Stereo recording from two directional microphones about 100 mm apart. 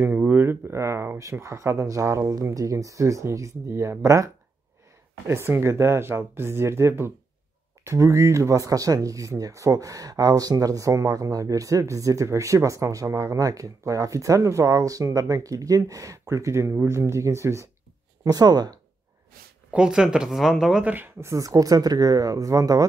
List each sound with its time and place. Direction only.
0.0 s speech: 20° right (ahead or behind)
18.2 s speech: 40° right (ahead or behind)
19.7 s speech: 10° right (ahead or behind)
20.9 s speech: 25° right (ahead or behind)